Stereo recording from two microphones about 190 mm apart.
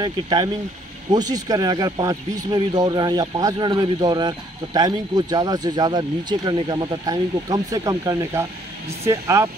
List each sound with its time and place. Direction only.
0.0 s speech: 20° right (ahead or behind)